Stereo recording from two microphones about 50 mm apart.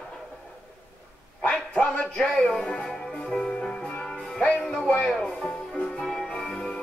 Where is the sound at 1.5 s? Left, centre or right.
Left.